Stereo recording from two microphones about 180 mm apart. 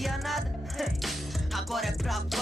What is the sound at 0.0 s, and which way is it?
Music, centre (ahead or behind).